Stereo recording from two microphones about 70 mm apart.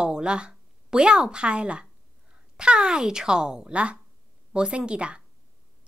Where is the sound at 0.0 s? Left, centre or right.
Centre.